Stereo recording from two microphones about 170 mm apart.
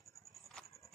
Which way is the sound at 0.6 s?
20° left (ahead or behind).